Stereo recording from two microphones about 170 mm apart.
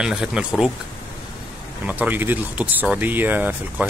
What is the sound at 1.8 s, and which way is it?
Speech, 10° right (ahead or behind).